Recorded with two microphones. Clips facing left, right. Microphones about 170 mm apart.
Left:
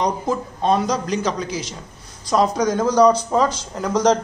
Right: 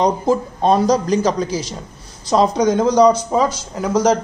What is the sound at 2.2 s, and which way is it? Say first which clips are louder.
A man's voice: right 3 dB; 25° right (ahead or behind).